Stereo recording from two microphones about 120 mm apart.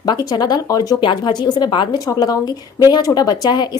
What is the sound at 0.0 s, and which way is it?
Speech, 35° left (ahead or behind).